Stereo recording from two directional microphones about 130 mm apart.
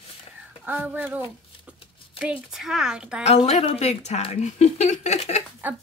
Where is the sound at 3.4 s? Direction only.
55° left (ahead or behind).